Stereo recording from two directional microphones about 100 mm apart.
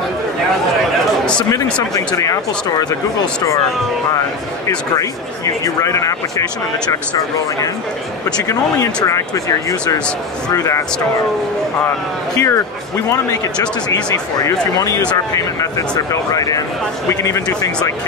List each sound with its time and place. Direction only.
2.1 s speech: 35° left (ahead or behind)
4.6 s speech: 35° left (ahead or behind)
8.5 s speech: 35° left (ahead or behind)
12.4 s speech: 30° left (ahead or behind)
14.1 s speech: 35° left (ahead or behind)